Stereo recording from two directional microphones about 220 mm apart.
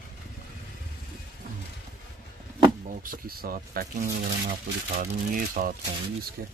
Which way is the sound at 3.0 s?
40° right (ahead or behind).